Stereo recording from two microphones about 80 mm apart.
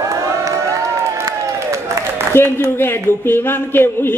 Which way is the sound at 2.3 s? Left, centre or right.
Left.